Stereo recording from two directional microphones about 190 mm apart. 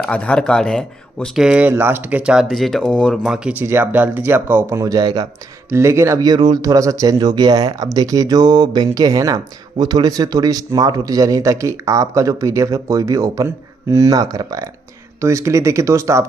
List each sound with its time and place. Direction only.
0.0 s speech: 5° left (ahead or behind); by 16.3 s 15° right (ahead or behind)